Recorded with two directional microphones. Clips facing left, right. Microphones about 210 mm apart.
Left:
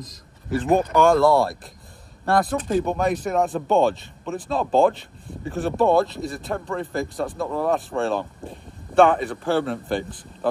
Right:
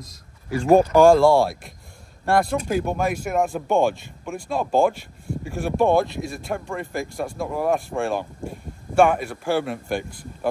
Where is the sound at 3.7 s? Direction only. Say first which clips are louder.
Left 2 dB; 15° right (ahead or behind).